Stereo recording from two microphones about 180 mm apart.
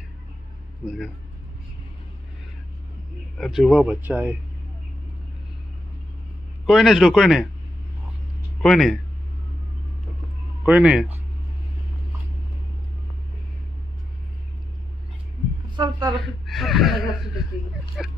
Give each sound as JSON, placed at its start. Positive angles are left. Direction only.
{"t": 0.8, "sound": "speech", "side_deg": 0}
{"t": 3.3, "sound": "speech", "side_deg": 0}
{"t": 6.6, "sound": "speech", "side_deg": 0}
{"t": 8.6, "sound": "speech", "side_deg": 0}
{"t": 10.6, "sound": "speech", "side_deg": -5}
{"t": 15.7, "sound": "a sound", "side_deg": -25}
{"t": 16.4, "sound": "speech", "side_deg": 0}